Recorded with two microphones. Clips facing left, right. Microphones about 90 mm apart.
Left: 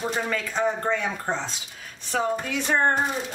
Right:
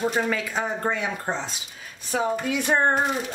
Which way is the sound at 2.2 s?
15° right (ahead or behind).